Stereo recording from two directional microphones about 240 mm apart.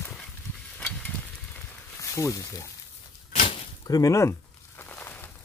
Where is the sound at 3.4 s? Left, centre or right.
Centre.